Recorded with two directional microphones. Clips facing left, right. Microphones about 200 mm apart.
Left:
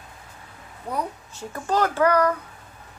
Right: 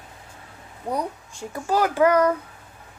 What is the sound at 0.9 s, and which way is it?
A child's voice, 10° right (ahead or behind).